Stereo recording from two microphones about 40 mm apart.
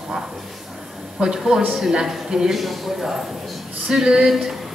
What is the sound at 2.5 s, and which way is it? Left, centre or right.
A man's voice, centre.